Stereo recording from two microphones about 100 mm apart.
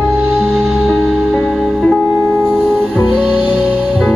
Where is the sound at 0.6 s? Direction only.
5° right (ahead or behind).